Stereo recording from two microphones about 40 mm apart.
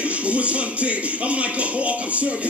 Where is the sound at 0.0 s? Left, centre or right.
Right.